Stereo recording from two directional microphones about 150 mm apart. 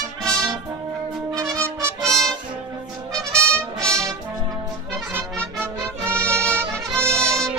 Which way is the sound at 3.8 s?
5° left (ahead or behind).